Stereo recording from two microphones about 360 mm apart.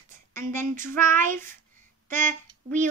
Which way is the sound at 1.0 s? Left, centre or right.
Right.